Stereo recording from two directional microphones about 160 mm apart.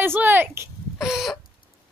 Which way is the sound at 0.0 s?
15° right (ahead or behind).